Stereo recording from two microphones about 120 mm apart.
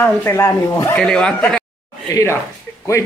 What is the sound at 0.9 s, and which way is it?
Speech, 10° left (ahead or behind).